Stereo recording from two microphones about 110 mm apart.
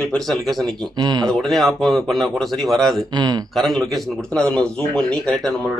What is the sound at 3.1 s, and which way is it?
Speech, 40° right (ahead or behind).